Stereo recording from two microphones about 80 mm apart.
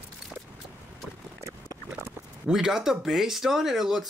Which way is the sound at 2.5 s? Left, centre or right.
Centre.